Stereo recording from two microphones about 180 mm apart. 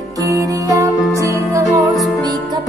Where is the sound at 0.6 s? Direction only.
20° right (ahead or behind).